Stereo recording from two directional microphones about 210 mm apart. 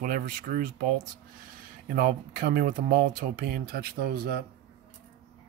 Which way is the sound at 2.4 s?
45° right (ahead or behind).